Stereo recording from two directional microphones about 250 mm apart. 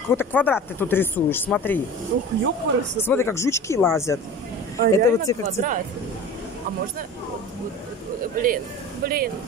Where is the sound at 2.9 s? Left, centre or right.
Centre.